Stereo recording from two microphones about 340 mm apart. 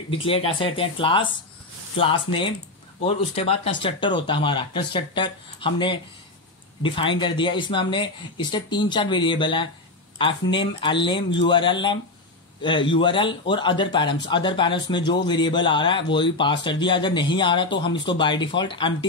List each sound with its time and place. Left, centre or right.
0.1 s speech: centre